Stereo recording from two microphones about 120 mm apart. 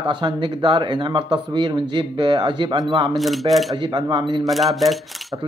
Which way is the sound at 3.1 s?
Centre (ahead or behind).